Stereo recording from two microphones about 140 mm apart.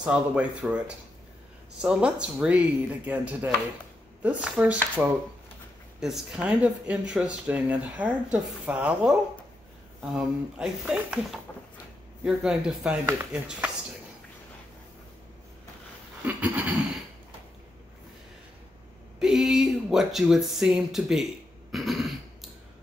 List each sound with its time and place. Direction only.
0.0 s speech: 10° right (ahead or behind)
10.1 s speech: 5° right (ahead or behind)
12.3 s speech: 5° right (ahead or behind)
16.3 s a sound: 10° right (ahead or behind)
19.1 s speech: 5° right (ahead or behind)
21.7 s throat clearing: centre (ahead or behind)